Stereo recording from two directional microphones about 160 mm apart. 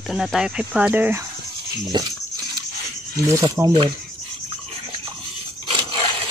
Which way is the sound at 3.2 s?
20° right (ahead or behind).